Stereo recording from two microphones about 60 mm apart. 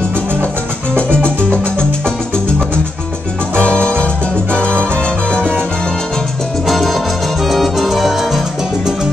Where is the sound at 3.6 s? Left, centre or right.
Centre.